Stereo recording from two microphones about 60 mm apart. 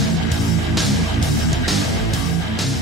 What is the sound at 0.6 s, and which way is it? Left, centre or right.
Music, centre.